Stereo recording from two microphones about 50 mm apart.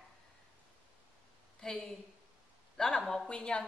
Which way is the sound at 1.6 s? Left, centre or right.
Centre.